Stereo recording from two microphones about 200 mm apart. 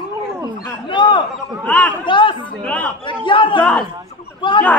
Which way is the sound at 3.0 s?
25° left (ahead or behind).